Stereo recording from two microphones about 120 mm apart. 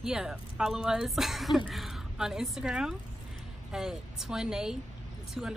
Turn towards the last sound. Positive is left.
turn(degrees=-5)  # may be behind; listen again after turning